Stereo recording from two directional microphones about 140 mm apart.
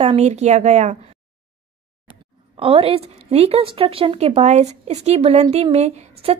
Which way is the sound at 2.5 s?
40° right (ahead or behind).